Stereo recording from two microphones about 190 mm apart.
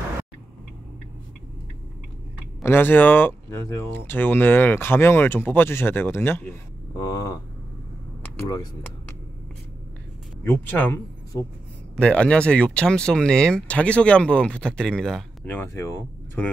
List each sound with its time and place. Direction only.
2.6 s speech: 10° left (ahead or behind)
7.0 s a sound: 20° left (ahead or behind)
8.2 s speech: 15° left (ahead or behind)
10.4 s speech: 10° left (ahead or behind)
12.0 s speech: 5° left (ahead or behind)